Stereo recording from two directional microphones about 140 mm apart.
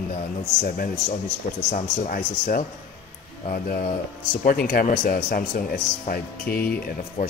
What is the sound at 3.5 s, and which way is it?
Speech, 90° left.